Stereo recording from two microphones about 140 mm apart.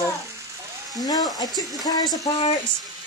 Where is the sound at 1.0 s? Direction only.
25° left (ahead or behind).